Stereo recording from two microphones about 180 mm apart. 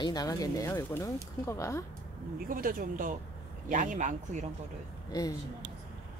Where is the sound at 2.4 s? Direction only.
50° right (ahead or behind).